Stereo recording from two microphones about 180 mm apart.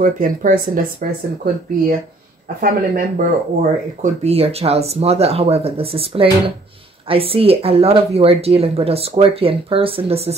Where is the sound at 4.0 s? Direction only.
35° right (ahead or behind).